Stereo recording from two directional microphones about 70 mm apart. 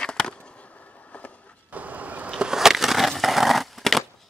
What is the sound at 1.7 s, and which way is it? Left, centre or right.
Vehicle, right.